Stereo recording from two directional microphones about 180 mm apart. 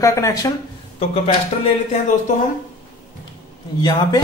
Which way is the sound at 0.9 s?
35° left (ahead or behind).